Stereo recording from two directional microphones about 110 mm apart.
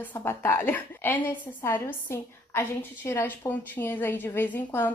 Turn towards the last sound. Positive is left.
turn(degrees=20)  # may be behind; listen again after turning